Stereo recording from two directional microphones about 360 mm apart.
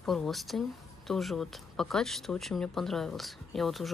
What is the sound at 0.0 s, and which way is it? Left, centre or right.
Speech, centre.